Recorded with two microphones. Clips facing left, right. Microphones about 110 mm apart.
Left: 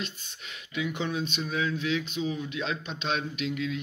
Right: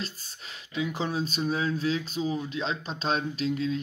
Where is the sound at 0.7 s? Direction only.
35° right (ahead or behind).